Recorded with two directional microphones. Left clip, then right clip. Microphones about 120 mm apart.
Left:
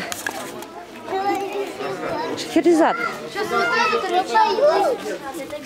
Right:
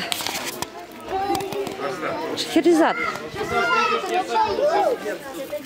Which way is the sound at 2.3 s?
10° right (ahead or behind).